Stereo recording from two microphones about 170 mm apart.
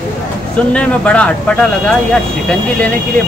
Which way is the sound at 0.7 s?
5° left (ahead or behind).